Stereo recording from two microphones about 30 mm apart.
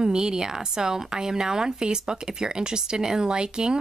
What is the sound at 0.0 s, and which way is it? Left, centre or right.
Speech, right.